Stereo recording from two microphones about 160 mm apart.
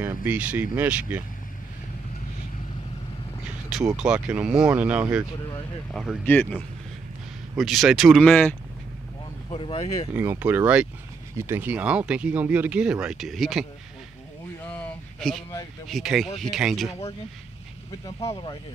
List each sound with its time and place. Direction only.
0.0 s speech: 10° right (ahead or behind)
3.9 s speech: 5° right (ahead or behind)
6.2 s speech: 10° left (ahead or behind)
7.5 s speech: centre (ahead or behind)
9.5 s speech: 35° left (ahead or behind)
10.1 s speech: 15° right (ahead or behind)
14.6 s a sound: 5° left (ahead or behind)
15.9 s speech: centre (ahead or behind)
18.0 s speech: 20° left (ahead or behind)